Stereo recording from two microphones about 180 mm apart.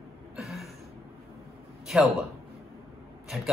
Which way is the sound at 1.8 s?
Centre (ahead or behind).